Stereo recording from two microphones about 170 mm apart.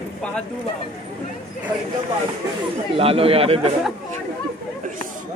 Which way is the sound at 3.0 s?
35° right (ahead or behind).